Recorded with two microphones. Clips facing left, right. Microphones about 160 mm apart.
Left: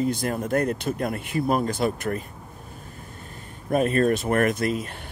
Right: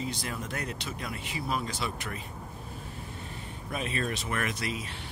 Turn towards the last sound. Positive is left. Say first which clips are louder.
# left 9 dB
turn(degrees=50)  # may be behind; listen again after turning